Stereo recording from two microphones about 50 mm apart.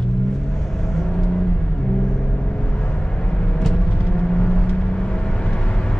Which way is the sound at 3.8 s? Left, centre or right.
Left.